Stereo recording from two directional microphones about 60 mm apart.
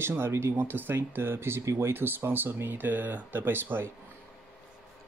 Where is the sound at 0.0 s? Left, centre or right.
Right.